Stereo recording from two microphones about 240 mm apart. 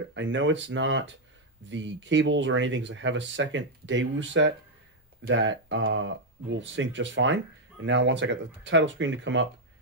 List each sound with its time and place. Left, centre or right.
0.1 s speech: right